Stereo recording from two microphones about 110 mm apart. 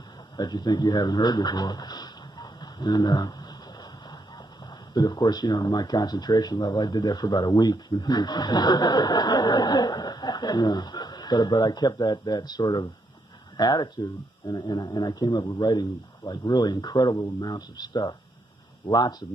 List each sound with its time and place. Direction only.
0.4 s speech: 45° left (ahead or behind)
4.9 s speech: 35° left (ahead or behind)
15.3 s speech: 30° left (ahead or behind)